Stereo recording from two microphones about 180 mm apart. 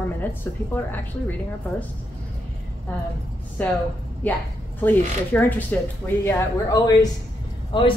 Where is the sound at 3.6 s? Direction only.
10° left (ahead or behind).